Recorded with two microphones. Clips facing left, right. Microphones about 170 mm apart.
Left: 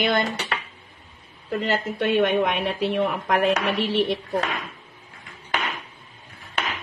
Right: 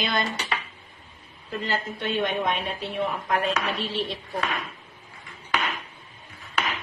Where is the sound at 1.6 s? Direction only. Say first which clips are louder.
Left 5 dB; 70° left (ahead or behind).